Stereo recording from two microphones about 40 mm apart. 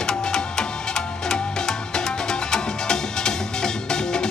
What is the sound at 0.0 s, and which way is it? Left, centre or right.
Music, centre.